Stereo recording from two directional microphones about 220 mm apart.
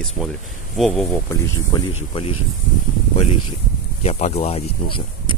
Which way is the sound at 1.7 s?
20° left (ahead or behind).